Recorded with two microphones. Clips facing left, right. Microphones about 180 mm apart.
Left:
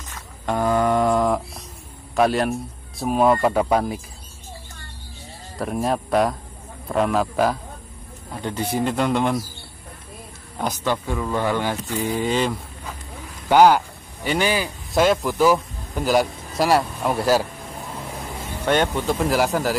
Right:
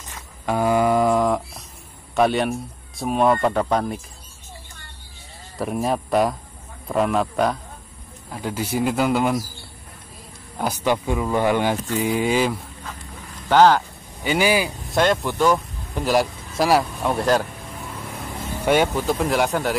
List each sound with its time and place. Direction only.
0.5 s a sound: 10° right (ahead or behind)
2.1 s speech: centre (ahead or behind)
5.6 s speech: centre (ahead or behind)
10.6 s speech: 10° right (ahead or behind)
13.5 s speech: 10° left (ahead or behind)
14.2 s speech: 5° right (ahead or behind)
14.9 s speech: 5° left (ahead or behind)
18.6 s speech: 10° right (ahead or behind)